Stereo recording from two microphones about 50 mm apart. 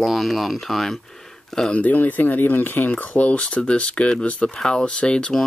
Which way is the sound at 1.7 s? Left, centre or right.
Left.